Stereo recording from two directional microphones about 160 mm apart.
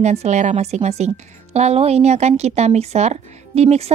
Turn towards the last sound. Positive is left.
turn(degrees=-40)  # may be behind; listen again after turning